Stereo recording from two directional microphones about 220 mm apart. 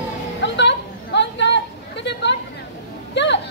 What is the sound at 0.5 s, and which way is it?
Chatter, 50° left (ahead or behind).